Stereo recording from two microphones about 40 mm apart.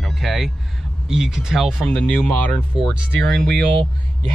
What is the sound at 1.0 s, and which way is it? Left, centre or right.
Speech, centre.